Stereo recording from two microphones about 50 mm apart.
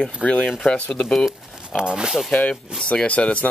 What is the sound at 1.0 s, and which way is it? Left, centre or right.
Speech, centre.